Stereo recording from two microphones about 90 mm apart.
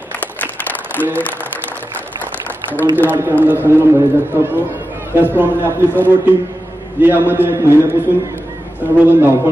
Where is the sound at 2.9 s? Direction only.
20° right (ahead or behind).